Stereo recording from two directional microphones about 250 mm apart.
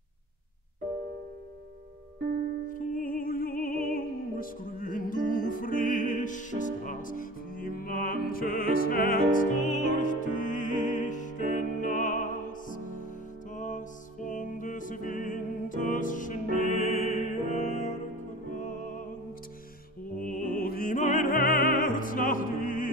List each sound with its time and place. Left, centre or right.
2.7 s music: left
20.2 s music: left